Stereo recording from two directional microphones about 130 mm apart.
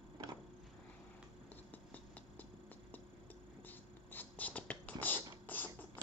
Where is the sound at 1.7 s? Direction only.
15° left (ahead or behind).